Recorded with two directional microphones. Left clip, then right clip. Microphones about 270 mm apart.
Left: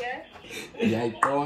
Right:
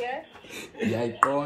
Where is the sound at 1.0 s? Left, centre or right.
Centre.